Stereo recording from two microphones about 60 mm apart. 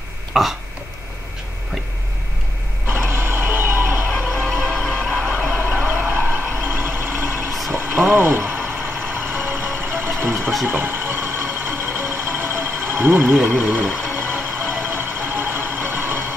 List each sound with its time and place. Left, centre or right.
0.3 s burping: centre
2.9 s reversing beeps: right
4.1 s music: centre
6.0 s vehicle: right
7.7 s mechanisms: right
8.6 s vehicle: right
10.2 s music: right
13.6 s speech: centre
14.3 s vehicle: right